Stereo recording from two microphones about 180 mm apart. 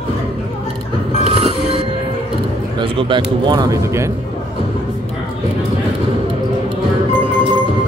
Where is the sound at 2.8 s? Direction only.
25° right (ahead or behind).